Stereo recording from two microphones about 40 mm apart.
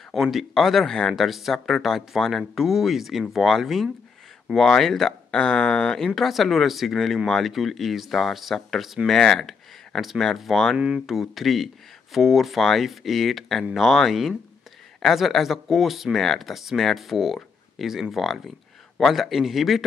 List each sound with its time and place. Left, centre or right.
0.2 s speech: centre
0.8 s speech: centre
1.1 s speech: centre
6.0 s speech: centre
9.0 s speech: centre
9.5 s a sound: centre
10.4 s speech: centre